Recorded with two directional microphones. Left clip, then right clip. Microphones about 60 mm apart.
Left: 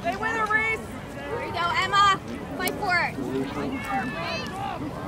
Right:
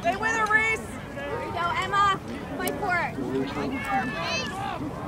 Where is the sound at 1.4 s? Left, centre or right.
Left.